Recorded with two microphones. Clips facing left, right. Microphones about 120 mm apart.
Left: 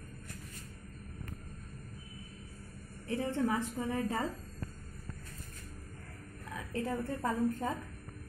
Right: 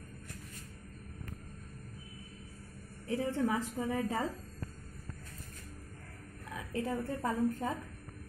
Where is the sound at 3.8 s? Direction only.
15° right (ahead or behind).